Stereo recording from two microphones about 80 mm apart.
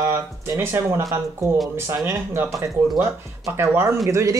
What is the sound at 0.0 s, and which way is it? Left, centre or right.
Speech, right.